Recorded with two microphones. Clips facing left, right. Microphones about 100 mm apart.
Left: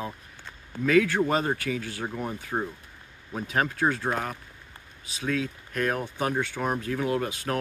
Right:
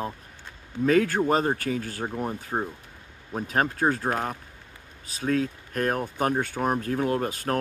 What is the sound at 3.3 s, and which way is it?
Speech, 40° right (ahead or behind).